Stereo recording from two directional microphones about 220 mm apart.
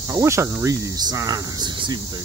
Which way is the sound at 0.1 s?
10° right (ahead or behind).